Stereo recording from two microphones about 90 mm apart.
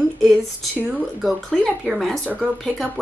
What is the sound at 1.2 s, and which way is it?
A woman's voice, 5° left (ahead or behind).